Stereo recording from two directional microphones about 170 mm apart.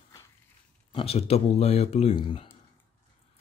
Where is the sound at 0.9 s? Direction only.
35° left (ahead or behind).